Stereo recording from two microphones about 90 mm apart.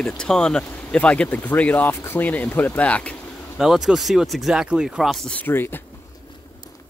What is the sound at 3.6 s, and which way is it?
Speech, 5° right (ahead or behind).